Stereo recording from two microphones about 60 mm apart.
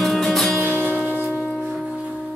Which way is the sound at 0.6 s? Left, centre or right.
Right.